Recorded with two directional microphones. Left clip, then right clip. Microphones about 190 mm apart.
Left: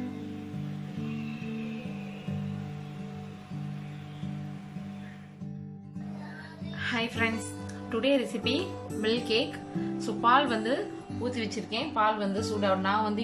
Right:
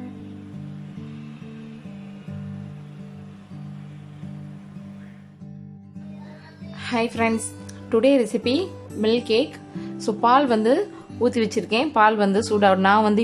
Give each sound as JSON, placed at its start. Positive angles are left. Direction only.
{"t": 6.8, "sound": "speech", "side_deg": -25}
{"t": 11.2, "sound": "a woman's voice", "side_deg": -40}